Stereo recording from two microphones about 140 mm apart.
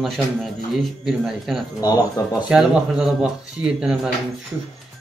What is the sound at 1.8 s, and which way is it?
Speech, 25° left (ahead or behind).